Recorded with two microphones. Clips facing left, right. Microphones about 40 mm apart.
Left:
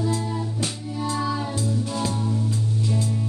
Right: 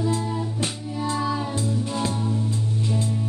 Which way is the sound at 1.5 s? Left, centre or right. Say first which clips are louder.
Even; right.